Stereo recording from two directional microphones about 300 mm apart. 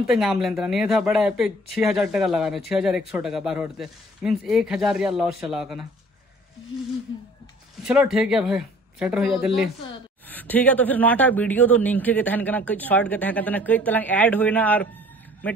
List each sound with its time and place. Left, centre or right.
0.0 s a man's voice: centre
7.8 s a man's voice: centre